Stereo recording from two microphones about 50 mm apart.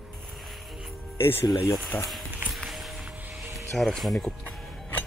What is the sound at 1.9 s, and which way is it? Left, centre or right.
Speech, left.